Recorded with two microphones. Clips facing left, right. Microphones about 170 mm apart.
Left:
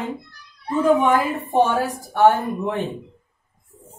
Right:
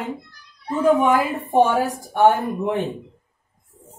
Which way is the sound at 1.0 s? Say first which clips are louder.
Even; 15° right (ahead or behind).